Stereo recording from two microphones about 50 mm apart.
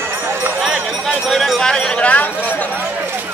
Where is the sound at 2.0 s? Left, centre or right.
Left.